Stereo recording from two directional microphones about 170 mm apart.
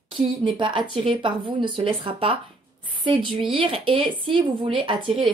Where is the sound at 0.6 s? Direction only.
30° right (ahead or behind).